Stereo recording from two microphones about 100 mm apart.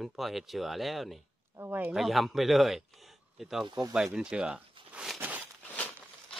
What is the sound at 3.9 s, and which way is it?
Speech, 10° right (ahead or behind).